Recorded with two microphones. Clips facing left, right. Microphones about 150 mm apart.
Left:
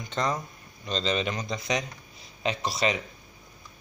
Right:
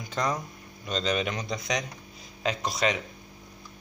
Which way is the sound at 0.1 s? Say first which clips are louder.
Even; 5° right (ahead or behind).